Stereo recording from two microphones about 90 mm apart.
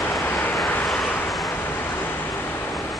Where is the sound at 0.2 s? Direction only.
20° left (ahead or behind).